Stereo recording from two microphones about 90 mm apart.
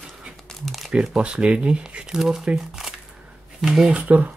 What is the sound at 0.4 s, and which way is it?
Speech, 5° left (ahead or behind).